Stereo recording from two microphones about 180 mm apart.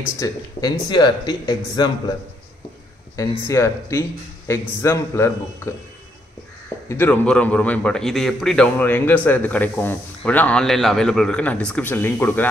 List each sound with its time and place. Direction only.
0.2 s speech: 20° left (ahead or behind)
3.2 s a man's voice: 15° left (ahead or behind)
6.9 s a man's voice: 10° left (ahead or behind)